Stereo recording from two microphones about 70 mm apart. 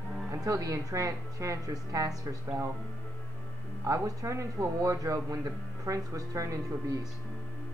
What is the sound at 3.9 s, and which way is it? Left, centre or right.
A man's voice, right.